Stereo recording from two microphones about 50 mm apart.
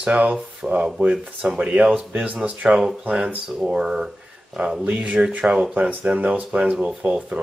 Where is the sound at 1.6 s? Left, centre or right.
Right.